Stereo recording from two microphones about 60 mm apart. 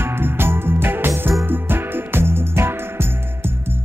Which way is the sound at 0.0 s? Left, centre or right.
Right.